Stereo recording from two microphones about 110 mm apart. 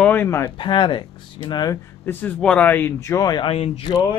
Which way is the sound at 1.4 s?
35° left (ahead or behind).